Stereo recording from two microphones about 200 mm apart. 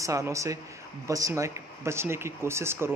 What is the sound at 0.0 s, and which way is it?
Speech, 15° right (ahead or behind).